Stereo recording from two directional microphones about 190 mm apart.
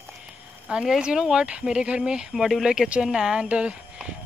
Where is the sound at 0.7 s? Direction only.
5° right (ahead or behind).